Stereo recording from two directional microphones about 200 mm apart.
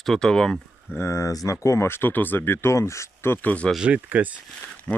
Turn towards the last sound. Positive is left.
turn(degrees=5)  # may be behind; listen again after turning